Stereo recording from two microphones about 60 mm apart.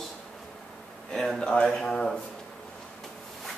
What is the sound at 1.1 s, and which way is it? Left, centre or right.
Speech, centre.